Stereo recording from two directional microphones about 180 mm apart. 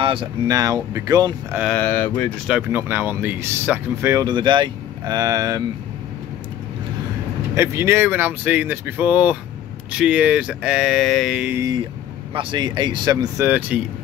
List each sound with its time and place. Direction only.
0.0 s speech: 30° right (ahead or behind)
1.6 s speech: 5° left (ahead or behind)
2.4 s speech: 10° right (ahead or behind)
7.5 s speech: 15° right (ahead or behind)
12.4 s speech: 25° right (ahead or behind)
13.5 s speech: 10° right (ahead or behind)